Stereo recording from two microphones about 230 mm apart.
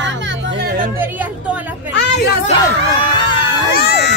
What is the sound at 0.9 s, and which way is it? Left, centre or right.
Chatter, centre.